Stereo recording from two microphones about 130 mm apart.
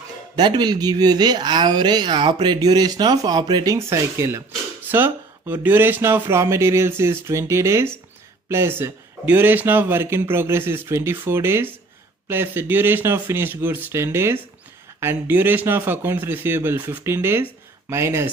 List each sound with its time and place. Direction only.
0.4 s speech: 35° right (ahead or behind)